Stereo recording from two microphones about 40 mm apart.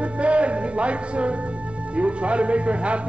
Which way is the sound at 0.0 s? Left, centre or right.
Right.